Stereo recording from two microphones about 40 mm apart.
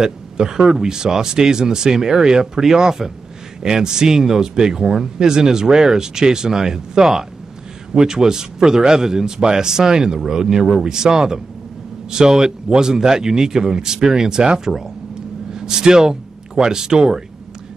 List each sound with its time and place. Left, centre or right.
0.0 s speech: centre